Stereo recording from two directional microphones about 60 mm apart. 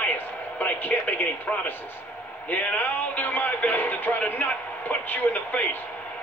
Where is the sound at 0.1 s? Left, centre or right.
Left.